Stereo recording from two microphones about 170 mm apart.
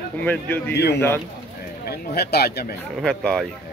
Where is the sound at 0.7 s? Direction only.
75° left (ahead or behind).